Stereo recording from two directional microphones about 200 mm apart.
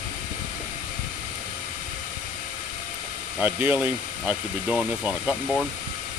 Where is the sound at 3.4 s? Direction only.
10° right (ahead or behind).